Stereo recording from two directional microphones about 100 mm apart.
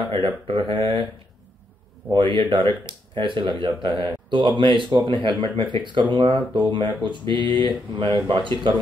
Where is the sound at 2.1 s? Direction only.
55° right (ahead or behind).